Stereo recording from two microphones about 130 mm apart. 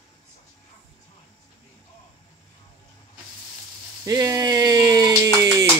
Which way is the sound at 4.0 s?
25° right (ahead or behind).